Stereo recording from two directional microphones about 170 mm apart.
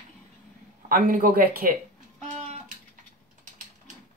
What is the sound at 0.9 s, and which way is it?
Speech, 55° right (ahead or behind).